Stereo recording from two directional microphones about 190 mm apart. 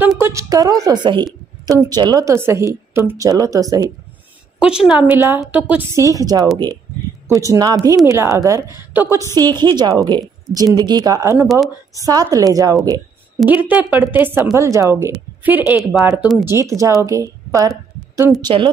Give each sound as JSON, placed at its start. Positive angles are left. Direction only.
{"t": 0.2, "sound": "a woman's voice", "side_deg": -15}
{"t": 4.6, "sound": "a woman's voice", "side_deg": -5}
{"t": 16.4, "sound": "a woman's voice", "side_deg": -15}